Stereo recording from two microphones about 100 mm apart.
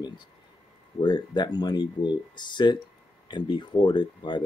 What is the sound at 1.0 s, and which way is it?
Speech, 50° left (ahead or behind).